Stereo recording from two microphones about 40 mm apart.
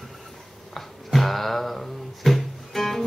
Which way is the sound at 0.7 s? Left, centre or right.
Centre.